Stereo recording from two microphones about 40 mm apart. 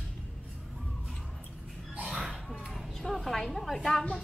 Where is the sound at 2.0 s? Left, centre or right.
Centre.